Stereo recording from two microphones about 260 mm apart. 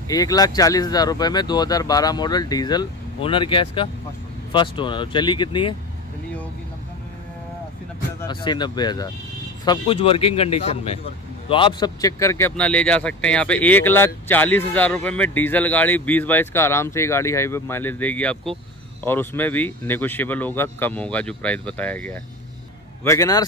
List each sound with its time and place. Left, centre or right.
0.1 s speech: centre
8.2 s speech: centre